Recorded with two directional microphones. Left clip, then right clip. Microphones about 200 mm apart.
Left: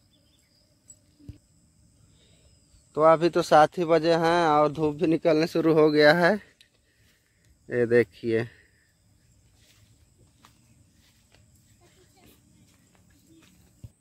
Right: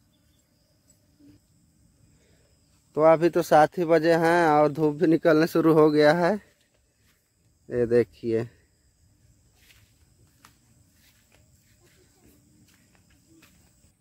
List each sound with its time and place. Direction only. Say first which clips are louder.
2.9 s speech: right 1 dB; 20° right (ahead or behind)
7.6 s speech: even; 5° right (ahead or behind)